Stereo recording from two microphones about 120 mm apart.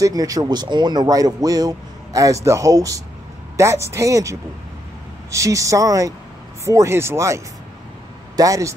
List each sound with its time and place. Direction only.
0.0 s speech: 30° right (ahead or behind)